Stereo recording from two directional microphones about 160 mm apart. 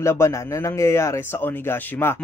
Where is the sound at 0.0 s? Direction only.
15° left (ahead or behind).